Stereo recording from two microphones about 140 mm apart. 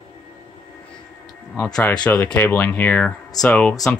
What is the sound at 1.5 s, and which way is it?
Speech, 5° left (ahead or behind).